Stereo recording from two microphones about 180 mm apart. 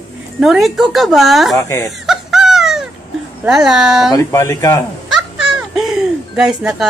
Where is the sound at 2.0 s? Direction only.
Centre (ahead or behind).